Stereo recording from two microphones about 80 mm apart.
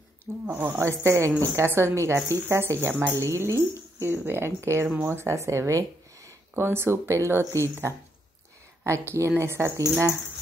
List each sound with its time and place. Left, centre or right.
0.5 s speech: right
2.9 s a woman's voice: centre
3.2 s speech: right
4.9 s a woman's voice: right
5.2 s speech: right
6.5 s speech: right
8.8 s speech: right